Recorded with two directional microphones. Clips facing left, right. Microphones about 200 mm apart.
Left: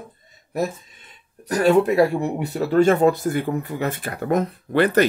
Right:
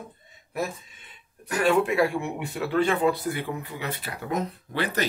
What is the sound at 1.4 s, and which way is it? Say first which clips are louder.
Speech: left 6 dB; 35° left (ahead or behind).